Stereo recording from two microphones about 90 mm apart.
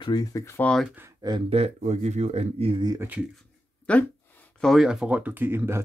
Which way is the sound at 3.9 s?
15° left (ahead or behind).